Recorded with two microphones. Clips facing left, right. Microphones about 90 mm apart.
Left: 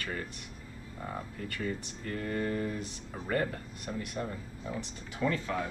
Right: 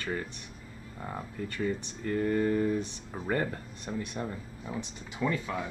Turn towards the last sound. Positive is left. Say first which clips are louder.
# even
turn(degrees=-15)  # may be behind; listen again after turning